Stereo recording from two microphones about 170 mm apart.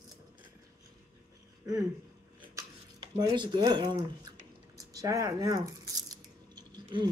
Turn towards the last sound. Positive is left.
turn(degrees=-25)  # may be behind; listen again after turning